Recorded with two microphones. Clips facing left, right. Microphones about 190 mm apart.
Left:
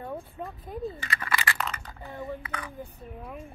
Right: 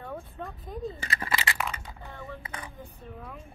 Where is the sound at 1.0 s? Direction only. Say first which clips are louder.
Left 1 dB; 25° right (ahead or behind).